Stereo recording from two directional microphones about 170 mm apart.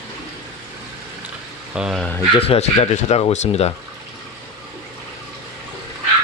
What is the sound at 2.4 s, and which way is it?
Speech, 35° left (ahead or behind).